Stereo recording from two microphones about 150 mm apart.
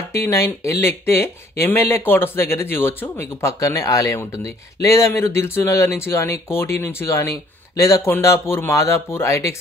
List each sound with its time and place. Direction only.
0.1 s speech: 20° left (ahead or behind)